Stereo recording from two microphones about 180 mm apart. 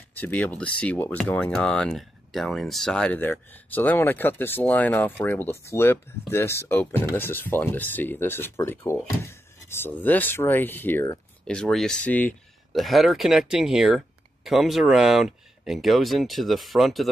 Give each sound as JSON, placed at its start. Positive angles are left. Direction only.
{"t": 0.1, "sound": "speech", "side_deg": 10}